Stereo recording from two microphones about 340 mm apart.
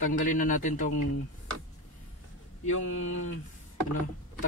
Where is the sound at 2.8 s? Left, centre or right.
Left.